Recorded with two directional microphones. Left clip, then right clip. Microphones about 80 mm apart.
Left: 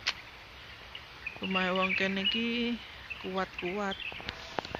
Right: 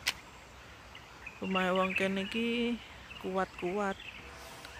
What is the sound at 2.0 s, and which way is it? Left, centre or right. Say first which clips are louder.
Bird: left 3 dB; right.